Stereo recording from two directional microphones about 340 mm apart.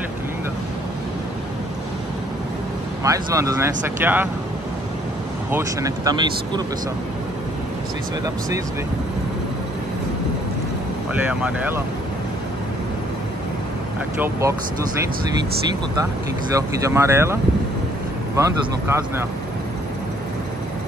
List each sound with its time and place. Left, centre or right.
3.0 s speech: centre
5.5 s speech: centre
11.2 s speech: centre
16.5 s speech: centre